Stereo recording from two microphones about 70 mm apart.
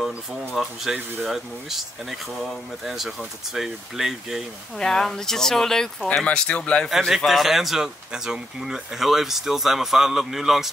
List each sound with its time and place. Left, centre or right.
0.6 s speech: centre
4.7 s speech: centre
6.9 s speech: centre